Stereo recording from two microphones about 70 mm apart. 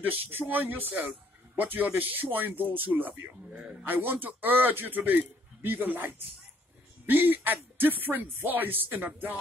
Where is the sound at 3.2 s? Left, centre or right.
Centre.